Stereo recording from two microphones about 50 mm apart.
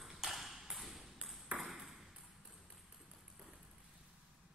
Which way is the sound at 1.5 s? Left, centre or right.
Right.